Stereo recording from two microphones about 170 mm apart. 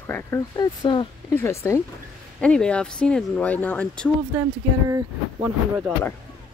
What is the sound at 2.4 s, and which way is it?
Speech, 5° left (ahead or behind).